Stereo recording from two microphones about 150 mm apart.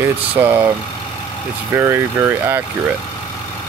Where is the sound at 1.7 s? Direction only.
15° right (ahead or behind).